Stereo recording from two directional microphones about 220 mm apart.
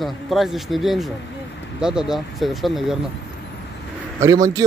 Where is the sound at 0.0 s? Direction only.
Centre (ahead or behind).